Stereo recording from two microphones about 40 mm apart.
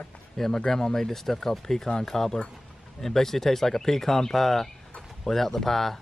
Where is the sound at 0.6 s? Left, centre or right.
Centre.